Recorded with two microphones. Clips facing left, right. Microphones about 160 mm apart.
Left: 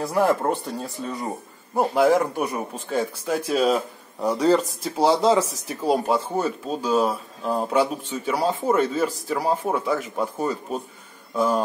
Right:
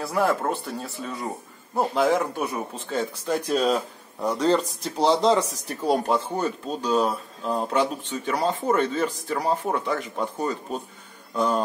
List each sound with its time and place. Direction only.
0.0 s speech: 15° left (ahead or behind)